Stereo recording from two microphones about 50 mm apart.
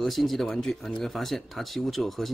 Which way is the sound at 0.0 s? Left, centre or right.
Centre.